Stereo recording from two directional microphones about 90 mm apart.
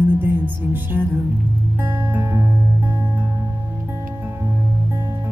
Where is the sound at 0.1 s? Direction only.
20° right (ahead or behind).